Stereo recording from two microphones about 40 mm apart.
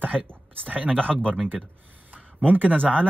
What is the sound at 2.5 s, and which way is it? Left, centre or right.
Speech, right.